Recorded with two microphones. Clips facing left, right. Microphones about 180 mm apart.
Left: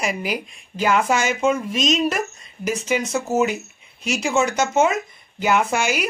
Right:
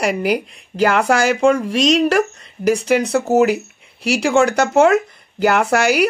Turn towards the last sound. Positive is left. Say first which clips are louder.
# right 6 dB
turn(degrees=-65)  # may be behind; listen again after turning